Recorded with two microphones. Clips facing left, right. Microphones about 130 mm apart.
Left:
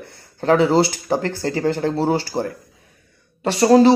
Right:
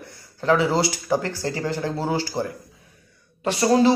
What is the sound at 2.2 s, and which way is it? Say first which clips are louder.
Speech: left 2 dB; 65° left (ahead or behind).